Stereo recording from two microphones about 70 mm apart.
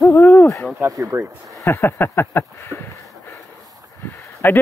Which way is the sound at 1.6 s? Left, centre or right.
Left.